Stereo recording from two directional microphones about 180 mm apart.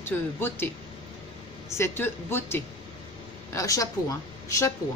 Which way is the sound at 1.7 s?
15° left (ahead or behind).